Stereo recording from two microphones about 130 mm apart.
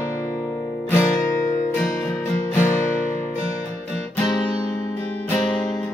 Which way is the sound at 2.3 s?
15° left (ahead or behind).